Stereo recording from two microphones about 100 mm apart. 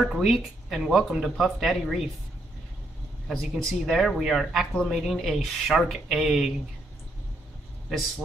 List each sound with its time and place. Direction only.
0.0 s speech: centre (ahead or behind)
3.3 s speech: 5° left (ahead or behind)